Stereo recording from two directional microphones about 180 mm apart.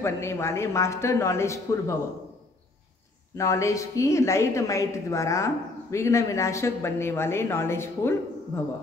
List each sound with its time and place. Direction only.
0.0 s a woman's voice: 15° left (ahead or behind)
3.3 s a woman's voice: 15° left (ahead or behind)